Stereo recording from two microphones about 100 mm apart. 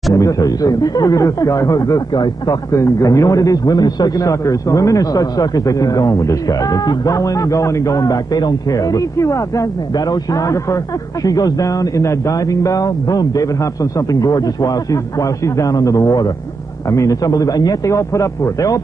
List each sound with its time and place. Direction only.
0.1 s a man's voice: 35° left (ahead or behind)
2.7 s a man's voice: 35° left (ahead or behind)